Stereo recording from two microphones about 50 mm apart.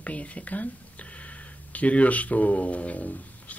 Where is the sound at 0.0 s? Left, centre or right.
Left.